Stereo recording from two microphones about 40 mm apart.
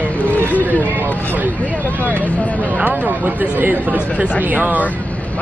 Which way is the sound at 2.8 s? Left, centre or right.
Right.